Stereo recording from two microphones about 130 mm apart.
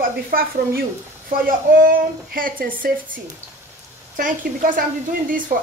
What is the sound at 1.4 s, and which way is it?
A woman's voice, 90° right.